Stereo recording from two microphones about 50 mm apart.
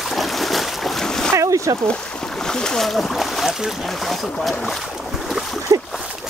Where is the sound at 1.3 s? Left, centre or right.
Right.